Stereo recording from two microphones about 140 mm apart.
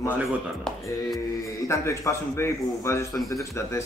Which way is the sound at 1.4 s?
20° left (ahead or behind).